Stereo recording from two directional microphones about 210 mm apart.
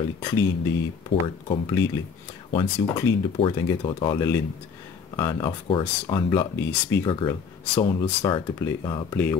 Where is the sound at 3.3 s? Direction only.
25° left (ahead or behind).